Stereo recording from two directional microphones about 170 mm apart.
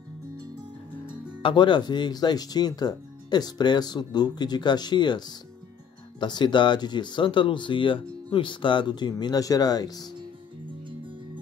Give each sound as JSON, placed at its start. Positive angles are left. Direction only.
{"t": 1.4, "sound": "speech", "side_deg": 30}